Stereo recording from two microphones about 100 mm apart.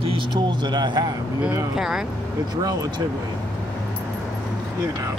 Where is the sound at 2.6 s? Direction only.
40° right (ahead or behind).